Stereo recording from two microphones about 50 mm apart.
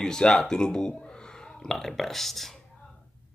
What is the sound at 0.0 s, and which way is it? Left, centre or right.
Speech, centre.